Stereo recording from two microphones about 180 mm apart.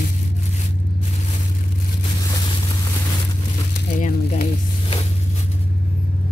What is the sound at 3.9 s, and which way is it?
Speech, 45° left (ahead or behind).